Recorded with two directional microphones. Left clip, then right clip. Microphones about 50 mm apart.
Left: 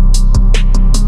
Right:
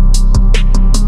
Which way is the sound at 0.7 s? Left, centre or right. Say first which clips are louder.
Right 1 dB; right.